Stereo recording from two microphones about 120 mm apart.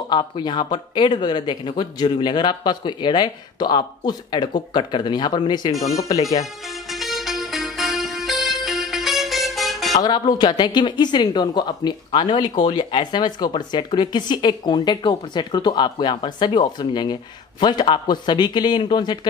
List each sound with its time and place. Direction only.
0.1 s speech: 40° left (ahead or behind)
6.9 s music: centre (ahead or behind)
10.0 s speech: 35° left (ahead or behind)